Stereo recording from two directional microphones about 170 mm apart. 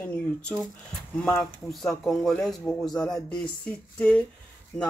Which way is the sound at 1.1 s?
10° left (ahead or behind).